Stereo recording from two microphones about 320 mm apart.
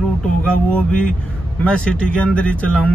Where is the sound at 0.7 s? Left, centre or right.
Centre.